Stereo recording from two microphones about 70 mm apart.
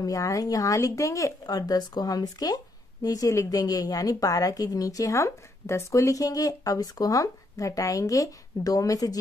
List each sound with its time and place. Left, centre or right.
0.0 s speech: left
1.5 s speech: left